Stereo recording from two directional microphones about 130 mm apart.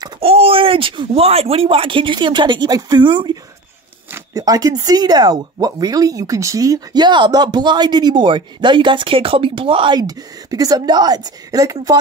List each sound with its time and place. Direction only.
0.2 s speech: 50° right (ahead or behind); by 12.0 s 25° right (ahead or behind)